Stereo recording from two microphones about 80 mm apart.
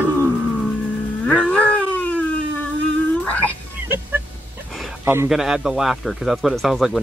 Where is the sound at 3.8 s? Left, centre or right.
Right.